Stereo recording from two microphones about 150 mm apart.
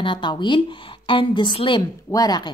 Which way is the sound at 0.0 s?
30° left (ahead or behind).